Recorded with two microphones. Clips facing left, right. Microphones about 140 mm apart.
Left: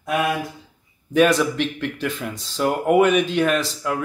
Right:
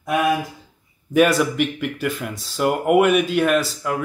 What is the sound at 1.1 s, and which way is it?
Speech, 10° right (ahead or behind).